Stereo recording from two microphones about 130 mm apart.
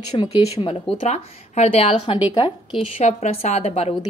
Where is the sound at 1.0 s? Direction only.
60° left (ahead or behind).